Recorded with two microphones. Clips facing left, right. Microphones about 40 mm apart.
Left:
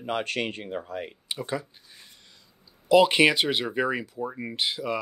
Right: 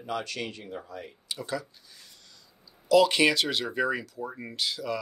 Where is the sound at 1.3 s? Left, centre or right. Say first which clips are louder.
Left 2 dB; left.